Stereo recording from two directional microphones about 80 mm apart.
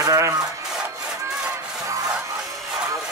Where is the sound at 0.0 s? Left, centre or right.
Right.